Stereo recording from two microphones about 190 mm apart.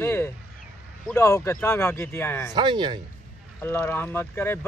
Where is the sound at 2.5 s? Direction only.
25° right (ahead or behind).